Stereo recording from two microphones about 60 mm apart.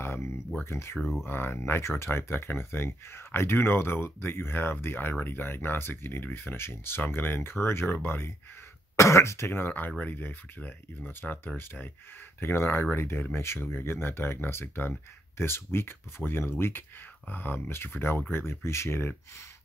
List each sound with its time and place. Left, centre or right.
0.0 s a sound: left
0.7 s speech: left
0.9 s speech: centre
1.2 s speech: left
8.9 s speech: left